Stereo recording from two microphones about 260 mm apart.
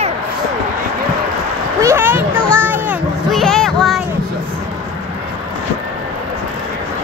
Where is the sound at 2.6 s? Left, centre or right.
Centre.